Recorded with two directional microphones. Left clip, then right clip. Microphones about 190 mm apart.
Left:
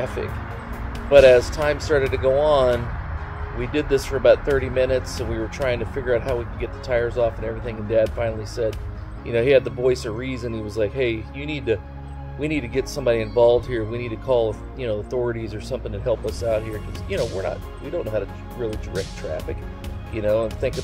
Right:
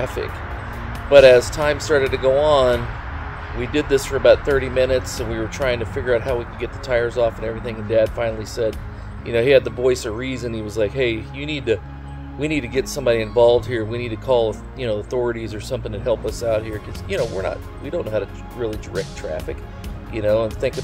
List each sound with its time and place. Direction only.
1.1 s speech: 15° right (ahead or behind)
20.2 s speech: 15° right (ahead or behind)